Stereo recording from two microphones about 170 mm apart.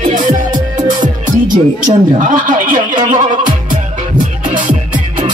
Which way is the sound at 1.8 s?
50° right (ahead or behind).